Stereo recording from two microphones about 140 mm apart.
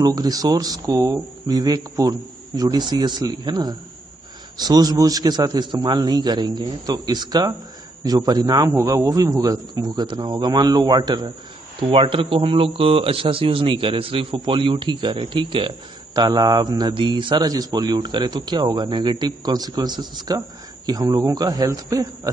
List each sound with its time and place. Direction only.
0.0 s a man's voice: 25° right (ahead or behind)